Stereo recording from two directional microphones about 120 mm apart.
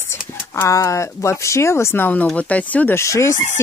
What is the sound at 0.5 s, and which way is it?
Speech, 25° left (ahead or behind).